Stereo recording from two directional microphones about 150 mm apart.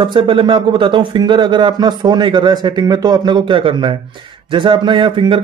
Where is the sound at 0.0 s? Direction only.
35° right (ahead or behind).